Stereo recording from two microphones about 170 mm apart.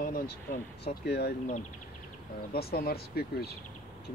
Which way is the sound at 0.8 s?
75° left (ahead or behind).